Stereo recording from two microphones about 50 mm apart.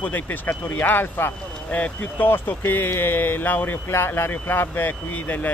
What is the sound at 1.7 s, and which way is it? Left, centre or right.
Speech, left.